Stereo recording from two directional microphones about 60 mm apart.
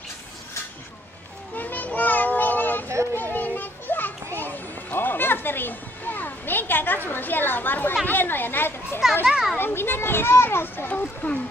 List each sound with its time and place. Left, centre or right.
1.5 s children playing: left
7.1 s a child's voice: left
9.2 s a child's voice: centre
9.6 s a child's voice: left